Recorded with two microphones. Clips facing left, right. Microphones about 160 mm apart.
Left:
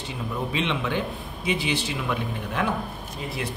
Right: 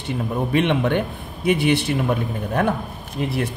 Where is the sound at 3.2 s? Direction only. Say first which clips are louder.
Right 10 dB; 60° right (ahead or behind).